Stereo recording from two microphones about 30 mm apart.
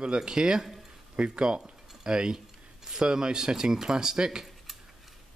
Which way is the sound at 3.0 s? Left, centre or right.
Right.